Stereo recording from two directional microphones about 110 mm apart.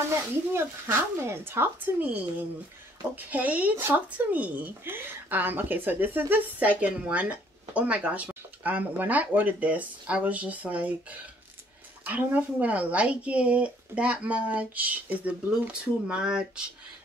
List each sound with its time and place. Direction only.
0.5 s speech: 20° right (ahead or behind)